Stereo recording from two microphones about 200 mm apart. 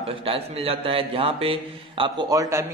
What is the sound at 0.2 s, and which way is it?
A man's voice, 30° right (ahead or behind).